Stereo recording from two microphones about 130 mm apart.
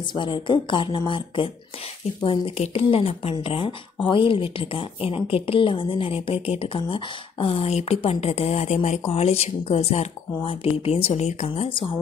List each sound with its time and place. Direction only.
0.1 s a woman's voice: 35° left (ahead or behind); by 11.6 s 60° left (ahead or behind)